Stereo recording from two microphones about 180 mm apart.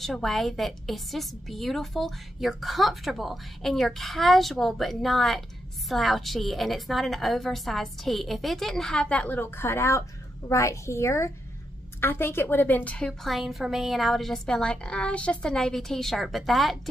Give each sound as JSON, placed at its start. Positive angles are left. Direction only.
{"t": 0.0, "sound": "a woman's voice", "side_deg": 0}